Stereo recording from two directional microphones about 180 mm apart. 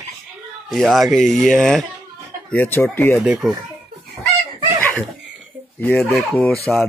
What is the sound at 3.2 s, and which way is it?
Speech, 5° right (ahead or behind).